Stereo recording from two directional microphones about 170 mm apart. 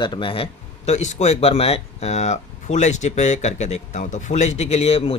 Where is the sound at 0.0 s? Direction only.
30° left (ahead or behind).